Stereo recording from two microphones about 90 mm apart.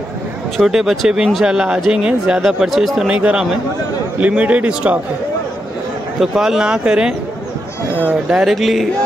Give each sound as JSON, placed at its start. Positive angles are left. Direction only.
{"t": 0.6, "sound": "speech", "side_deg": -5}
{"t": 3.1, "sound": "speech", "side_deg": -15}
{"t": 6.1, "sound": "speech", "side_deg": -5}
{"t": 8.5, "sound": "speech", "side_deg": 0}